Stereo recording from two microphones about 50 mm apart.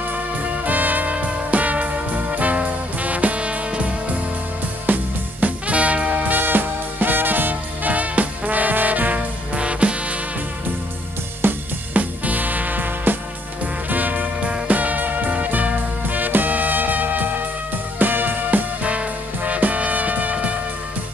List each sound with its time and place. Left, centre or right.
0.7 s music: right
11.4 s music: right
11.9 s music: right